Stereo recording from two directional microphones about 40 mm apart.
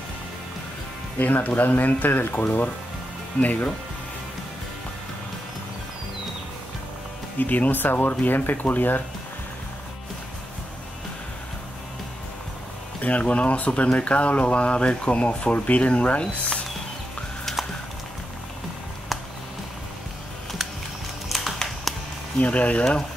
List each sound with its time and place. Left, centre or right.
1.1 s speech: left
7.3 s speech: left
13.0 s speech: left
17.5 s a sound: centre
21.3 s a sound: centre
22.4 s speech: left